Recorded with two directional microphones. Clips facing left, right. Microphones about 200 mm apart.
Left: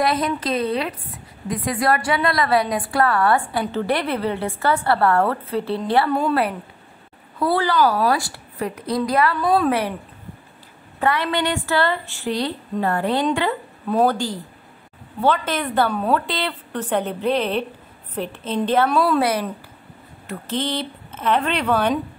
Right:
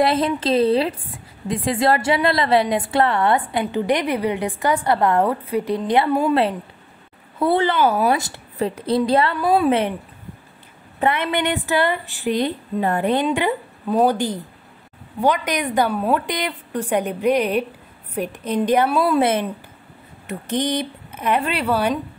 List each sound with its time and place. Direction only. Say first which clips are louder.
0.0 s a woman's voice: right 3 dB; 25° right (ahead or behind); by 6.3 s 10° right (ahead or behind)
7.3 s a woman's voice: right 1 dB; 25° right (ahead or behind)
9.4 s a woman's voice: right 1 dB; 10° right (ahead or behind)
9.7 s a woman's voice: right 3 dB; 25° right (ahead or behind)
11.0 s a woman's voice: right 1 dB; 20° right (ahead or behind)